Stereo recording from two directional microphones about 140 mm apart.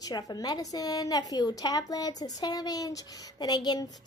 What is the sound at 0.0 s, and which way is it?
A woman's voice, 30° left (ahead or behind).